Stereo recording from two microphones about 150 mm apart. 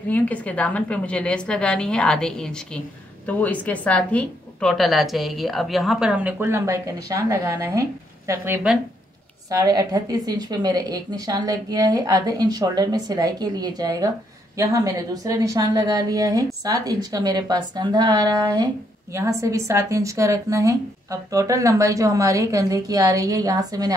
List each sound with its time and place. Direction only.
0.1 s a woman's voice: 10° left (ahead or behind); by 7.8 s 20° right (ahead or behind)
8.7 s a woman's voice: 5° right (ahead or behind)
9.5 s a woman's voice: 25° right (ahead or behind)